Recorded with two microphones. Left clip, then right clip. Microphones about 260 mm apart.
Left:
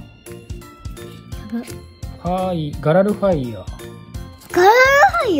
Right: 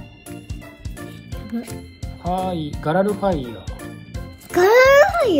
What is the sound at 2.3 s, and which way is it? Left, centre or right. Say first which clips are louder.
Speech: left 2 dB; left.